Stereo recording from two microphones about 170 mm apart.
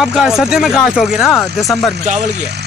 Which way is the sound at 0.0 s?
Centre (ahead or behind).